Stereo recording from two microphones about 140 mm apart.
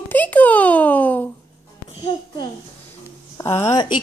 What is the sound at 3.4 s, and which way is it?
Speech, 20° left (ahead or behind).